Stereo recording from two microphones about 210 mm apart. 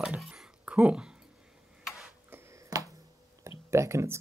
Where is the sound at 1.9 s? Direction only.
Centre (ahead or behind).